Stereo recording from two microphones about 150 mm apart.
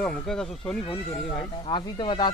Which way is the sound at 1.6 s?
30° left (ahead or behind).